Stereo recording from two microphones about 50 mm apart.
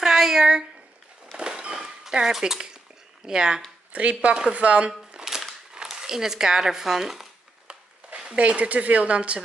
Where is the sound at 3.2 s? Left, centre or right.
Centre.